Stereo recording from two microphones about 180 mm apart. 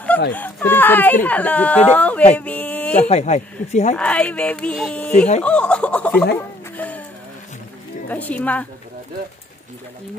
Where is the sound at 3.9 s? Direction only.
5° left (ahead or behind).